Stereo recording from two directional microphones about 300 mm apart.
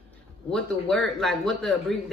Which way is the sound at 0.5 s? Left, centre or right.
Centre.